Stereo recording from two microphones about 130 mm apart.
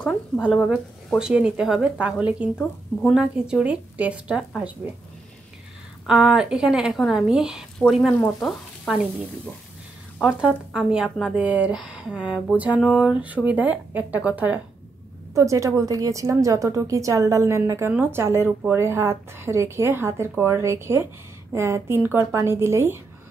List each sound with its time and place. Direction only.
0.7 s speech: 5° right (ahead or behind)
2.5 s speech: 10° left (ahead or behind)
3.2 s speech: 5° right (ahead or behind)
6.0 s a woman's voice: 5° right (ahead or behind)
10.2 s a woman's voice: 5° right (ahead or behind)
15.3 s speech: 25° right (ahead or behind)